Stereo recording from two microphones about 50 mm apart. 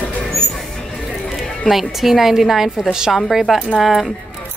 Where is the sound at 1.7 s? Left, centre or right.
Centre.